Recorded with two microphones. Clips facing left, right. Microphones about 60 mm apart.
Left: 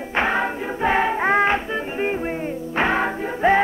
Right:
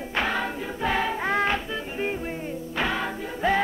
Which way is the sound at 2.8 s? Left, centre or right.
Left.